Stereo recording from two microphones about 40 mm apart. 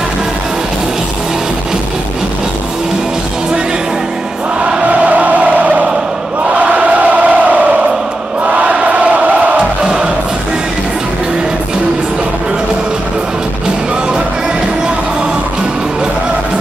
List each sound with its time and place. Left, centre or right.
4.6 s choir: right
4.8 s music: right
6.4 s crowd: right
8.5 s music: right